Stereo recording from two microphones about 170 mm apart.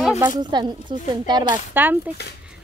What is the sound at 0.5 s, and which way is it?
Speech, 25° right (ahead or behind).